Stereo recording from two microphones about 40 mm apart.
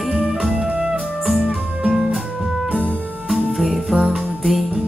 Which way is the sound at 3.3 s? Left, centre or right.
Centre.